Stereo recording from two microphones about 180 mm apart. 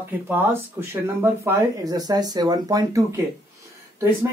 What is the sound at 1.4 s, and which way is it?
Speech, 20° right (ahead or behind).